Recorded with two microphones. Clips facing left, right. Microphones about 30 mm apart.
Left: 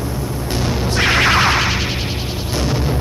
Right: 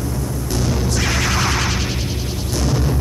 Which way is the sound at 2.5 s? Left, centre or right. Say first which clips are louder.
Left 1 dB; left.